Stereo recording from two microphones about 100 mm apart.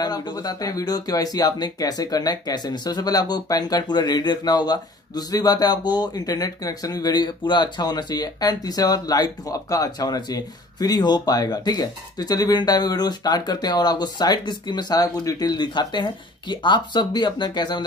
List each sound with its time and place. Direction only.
0.0 s speech: 45° left (ahead or behind)